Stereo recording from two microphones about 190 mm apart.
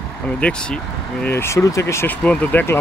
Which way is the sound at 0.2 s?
5° left (ahead or behind).